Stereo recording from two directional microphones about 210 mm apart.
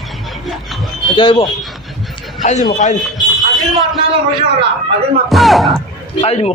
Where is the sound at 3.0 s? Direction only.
Centre (ahead or behind).